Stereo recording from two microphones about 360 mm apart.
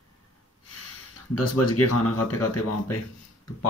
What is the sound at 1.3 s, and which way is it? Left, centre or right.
Speech, left.